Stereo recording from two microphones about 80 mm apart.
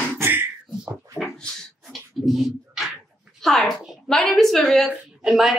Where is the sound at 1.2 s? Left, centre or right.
Centre.